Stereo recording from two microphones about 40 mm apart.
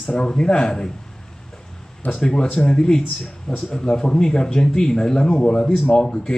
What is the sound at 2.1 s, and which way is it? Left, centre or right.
Speech, left.